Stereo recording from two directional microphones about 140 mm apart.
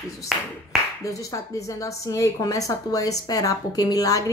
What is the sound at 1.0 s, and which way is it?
A woman's voice, 25° left (ahead or behind).